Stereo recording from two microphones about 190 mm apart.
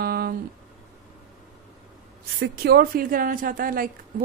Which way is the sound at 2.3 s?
55° right (ahead or behind).